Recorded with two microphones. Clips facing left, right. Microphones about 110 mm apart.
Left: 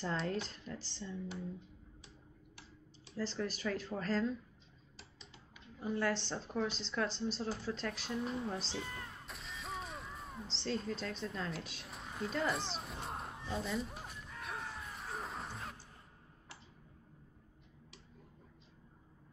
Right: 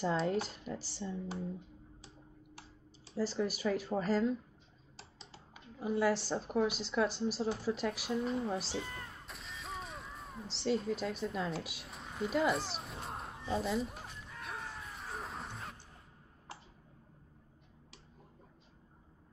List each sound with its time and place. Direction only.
0.5 s speech: 10° right (ahead or behind)
1.1 s speech: 35° right (ahead or behind)
3.2 s speech: 10° right (ahead or behind)
4.9 s typing: 35° right (ahead or behind)
5.8 s a woman's voice: 10° right (ahead or behind)
12.3 s a sound: 5° right (ahead or behind)